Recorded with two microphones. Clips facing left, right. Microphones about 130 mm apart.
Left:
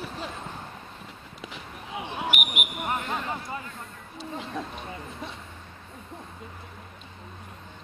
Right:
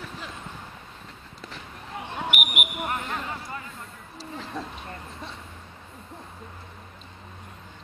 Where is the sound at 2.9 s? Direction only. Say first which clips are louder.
Left 1 dB; 20° left (ahead or behind).